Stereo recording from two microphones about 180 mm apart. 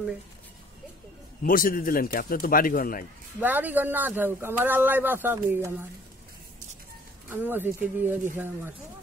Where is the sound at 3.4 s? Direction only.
10° right (ahead or behind).